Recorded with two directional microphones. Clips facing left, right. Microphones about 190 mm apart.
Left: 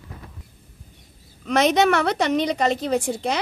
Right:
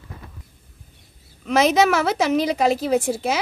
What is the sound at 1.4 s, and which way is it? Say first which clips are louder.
A woman's voice: right 1 dB; centre (ahead or behind).